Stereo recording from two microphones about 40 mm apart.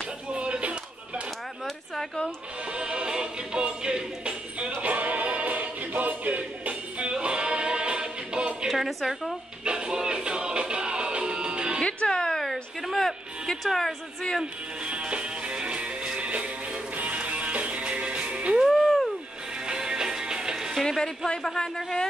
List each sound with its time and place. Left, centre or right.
0.3 s a sound: right
2.7 s music: right
8.6 s music: centre
9.7 s music: right
12.1 s a sound: centre
14.4 s music: right
18.7 s a sound: centre
19.6 s music: centre
21.4 s speech: centre